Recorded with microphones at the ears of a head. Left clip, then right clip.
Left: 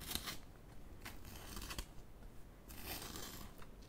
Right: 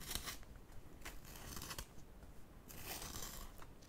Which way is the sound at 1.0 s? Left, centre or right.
Centre.